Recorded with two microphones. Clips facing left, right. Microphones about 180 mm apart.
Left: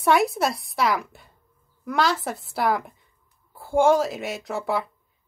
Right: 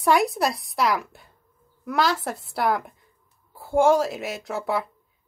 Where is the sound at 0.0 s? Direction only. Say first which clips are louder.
Even; centre (ahead or behind).